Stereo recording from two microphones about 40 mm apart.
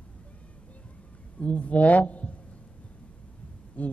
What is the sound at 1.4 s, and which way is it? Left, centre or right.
Speech, left.